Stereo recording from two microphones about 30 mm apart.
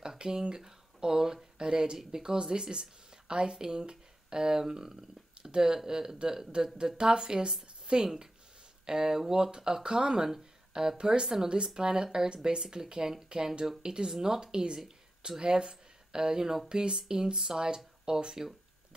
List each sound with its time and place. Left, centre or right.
0.2 s a man's voice: right
6.5 s speech: right
16.6 s speech: right
16.9 s speech: centre
17.7 s a sound: centre